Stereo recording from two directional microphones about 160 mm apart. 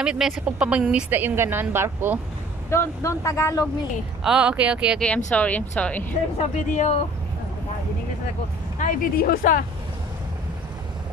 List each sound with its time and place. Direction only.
0.0 s a woman's voice: 5° right (ahead or behind)
2.7 s speech: 15° left (ahead or behind)
4.2 s a woman's voice: 5° right (ahead or behind)
5.0 s speech: 10° left (ahead or behind)
6.3 s speech: 40° left (ahead or behind)
8.7 s speech: 60° left (ahead or behind)